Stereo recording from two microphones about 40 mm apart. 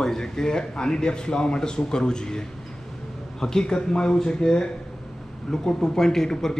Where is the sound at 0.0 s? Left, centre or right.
Centre.